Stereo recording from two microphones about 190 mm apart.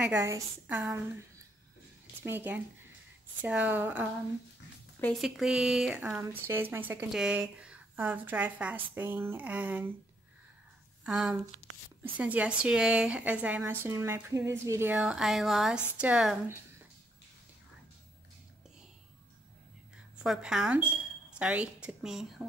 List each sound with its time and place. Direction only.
0.0 s speech: 10° right (ahead or behind)
2.2 s speech: 10° right (ahead or behind)
5.2 s speech: centre (ahead or behind)
11.1 s speech: 5° right (ahead or behind)
20.2 s speech: 5° right (ahead or behind)